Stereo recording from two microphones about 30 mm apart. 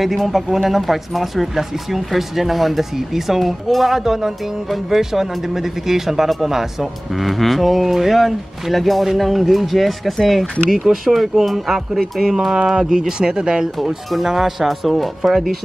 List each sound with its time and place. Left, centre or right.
0.0 s speech: centre
3.9 s speech: centre
10.7 s speech: centre
13.2 s speech: right
14.2 s speech: centre